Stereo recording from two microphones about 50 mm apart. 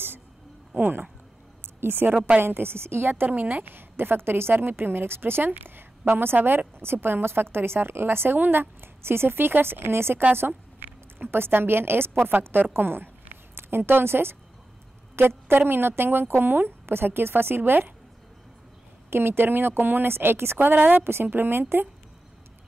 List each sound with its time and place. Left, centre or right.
0.7 s a woman's voice: right
3.1 s a woman's voice: right
19.0 s a woman's voice: right
21.0 s a woman's voice: right